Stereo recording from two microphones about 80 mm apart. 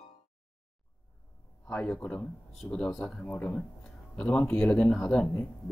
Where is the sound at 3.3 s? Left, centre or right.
Centre.